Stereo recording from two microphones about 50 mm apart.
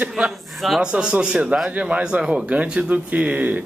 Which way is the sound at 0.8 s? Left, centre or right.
Right.